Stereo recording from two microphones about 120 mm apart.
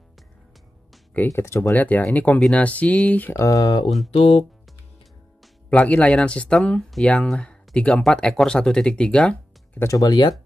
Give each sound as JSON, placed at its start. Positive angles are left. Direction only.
{"t": 1.1, "sound": "speech", "side_deg": 20}
{"t": 3.4, "sound": "speech", "side_deg": 35}
{"t": 4.1, "sound": "speech", "side_deg": 55}
{"t": 5.7, "sound": "speech", "side_deg": 10}
{"t": 9.8, "sound": "speech", "side_deg": 35}